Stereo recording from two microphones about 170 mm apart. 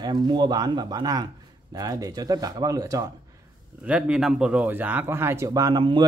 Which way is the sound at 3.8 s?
5° right (ahead or behind).